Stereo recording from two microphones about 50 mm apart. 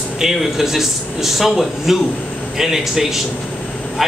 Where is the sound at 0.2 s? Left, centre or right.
Centre.